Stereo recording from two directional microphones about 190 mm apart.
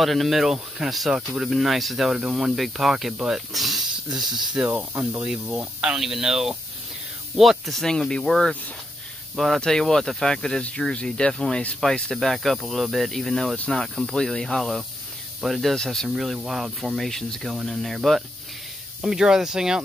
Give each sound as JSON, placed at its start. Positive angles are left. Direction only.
{"t": 0.0, "sound": "speech", "side_deg": 0}